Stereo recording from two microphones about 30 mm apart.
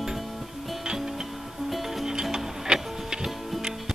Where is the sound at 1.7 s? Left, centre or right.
Centre.